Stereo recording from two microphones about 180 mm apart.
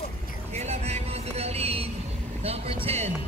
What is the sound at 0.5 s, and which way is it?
Vehicle, 35° right (ahead or behind).